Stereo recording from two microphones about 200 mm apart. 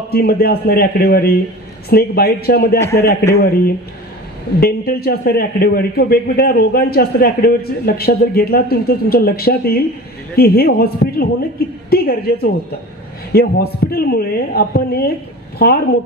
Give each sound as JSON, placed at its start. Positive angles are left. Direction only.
{"t": 0.1, "sound": "a man's voice", "side_deg": 50}
{"t": 2.8, "sound": "a man's voice", "side_deg": 15}
{"t": 3.4, "sound": "a man's voice", "side_deg": 50}